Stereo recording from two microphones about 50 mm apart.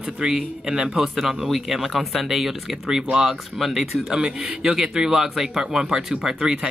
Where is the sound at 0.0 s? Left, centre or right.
Centre.